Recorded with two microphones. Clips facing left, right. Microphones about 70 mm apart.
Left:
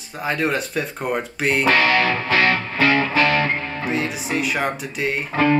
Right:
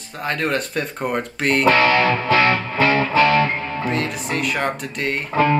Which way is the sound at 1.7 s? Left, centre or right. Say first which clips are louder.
Right 2 dB; right.